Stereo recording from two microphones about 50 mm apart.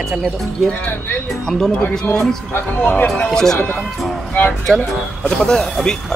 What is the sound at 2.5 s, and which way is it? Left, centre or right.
Speech, left.